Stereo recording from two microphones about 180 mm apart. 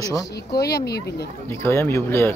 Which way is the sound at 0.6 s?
65° left (ahead or behind).